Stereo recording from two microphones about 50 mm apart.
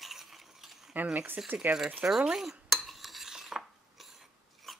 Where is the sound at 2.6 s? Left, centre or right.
Centre.